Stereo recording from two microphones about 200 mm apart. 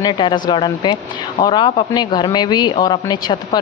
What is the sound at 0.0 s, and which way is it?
Speech, 20° left (ahead or behind).